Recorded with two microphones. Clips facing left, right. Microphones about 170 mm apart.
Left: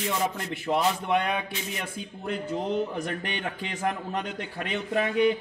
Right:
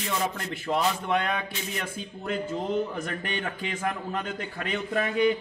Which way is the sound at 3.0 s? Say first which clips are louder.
Even; 20° left (ahead or behind).